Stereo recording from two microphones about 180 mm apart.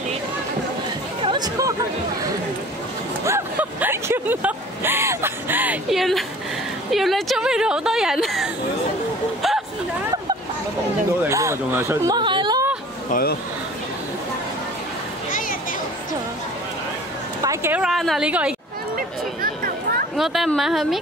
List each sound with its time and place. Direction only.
1.2 s chatter: 25° right (ahead or behind)
3.3 s speech: 10° right (ahead or behind)
11.2 s speech: 15° right (ahead or behind)
13.1 s speech: 60° left (ahead or behind)
17.4 s a sound: 15° right (ahead or behind)
17.8 s speech: centre (ahead or behind)
18.9 s a sound: 50° right (ahead or behind)
20.2 s speech: centre (ahead or behind)